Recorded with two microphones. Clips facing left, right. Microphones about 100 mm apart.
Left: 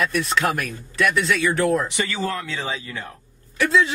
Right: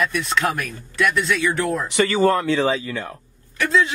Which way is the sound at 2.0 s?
55° right (ahead or behind).